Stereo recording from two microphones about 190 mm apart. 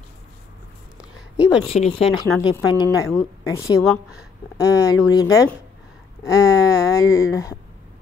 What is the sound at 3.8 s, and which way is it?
Speech, 5° right (ahead or behind).